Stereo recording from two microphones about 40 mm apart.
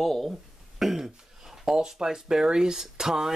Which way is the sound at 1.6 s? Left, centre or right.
Centre.